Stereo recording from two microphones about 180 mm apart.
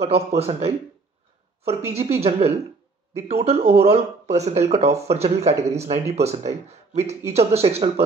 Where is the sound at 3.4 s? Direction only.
35° right (ahead or behind).